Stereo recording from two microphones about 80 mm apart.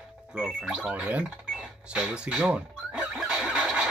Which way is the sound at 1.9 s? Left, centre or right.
Centre.